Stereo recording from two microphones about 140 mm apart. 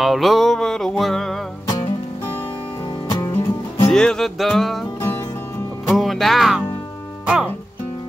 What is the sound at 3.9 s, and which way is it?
Music, 5° left (ahead or behind).